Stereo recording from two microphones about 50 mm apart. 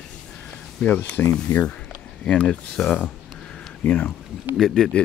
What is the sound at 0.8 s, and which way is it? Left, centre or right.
Speech, left.